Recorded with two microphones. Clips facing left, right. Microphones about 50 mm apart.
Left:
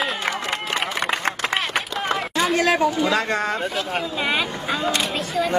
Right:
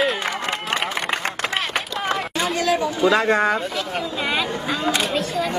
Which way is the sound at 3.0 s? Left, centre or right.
Centre.